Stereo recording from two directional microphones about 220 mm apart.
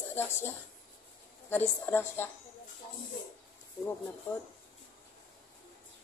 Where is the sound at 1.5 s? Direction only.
10° left (ahead or behind).